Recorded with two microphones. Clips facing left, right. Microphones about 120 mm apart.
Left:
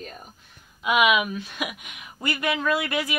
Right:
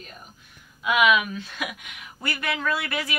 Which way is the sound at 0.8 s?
15° left (ahead or behind).